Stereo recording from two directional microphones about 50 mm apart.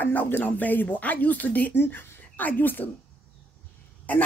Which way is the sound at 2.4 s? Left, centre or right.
Left.